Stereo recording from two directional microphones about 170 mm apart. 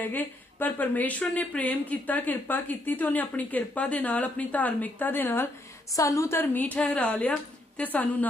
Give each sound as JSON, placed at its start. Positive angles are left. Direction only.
{"t": 0.0, "sound": "speech", "side_deg": 10}